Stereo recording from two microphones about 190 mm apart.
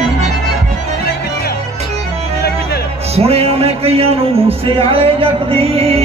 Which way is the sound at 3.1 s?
30° right (ahead or behind).